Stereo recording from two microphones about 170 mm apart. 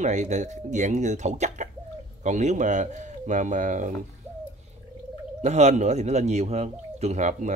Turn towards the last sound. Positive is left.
turn(degrees=-45)  # may be behind; listen again after turning